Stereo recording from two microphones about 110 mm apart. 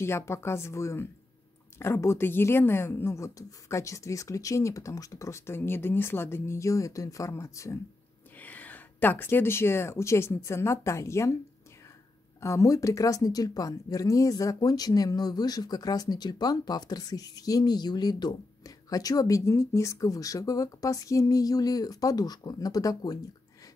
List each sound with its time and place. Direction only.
0.0 s speech: 25° left (ahead or behind)
8.4 s speech: 15° left (ahead or behind)
12.4 s speech: 25° left (ahead or behind)